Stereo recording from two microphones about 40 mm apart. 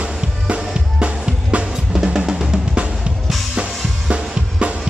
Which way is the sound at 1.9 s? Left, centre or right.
Centre.